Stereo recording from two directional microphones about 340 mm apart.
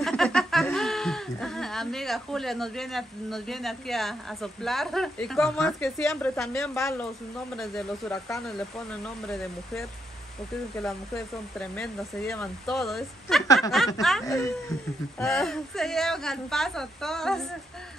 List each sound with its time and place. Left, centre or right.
0.0 s speech: centre
11.5 s speech: centre